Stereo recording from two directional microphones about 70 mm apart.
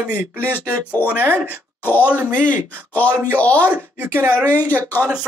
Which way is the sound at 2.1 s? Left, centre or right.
Right.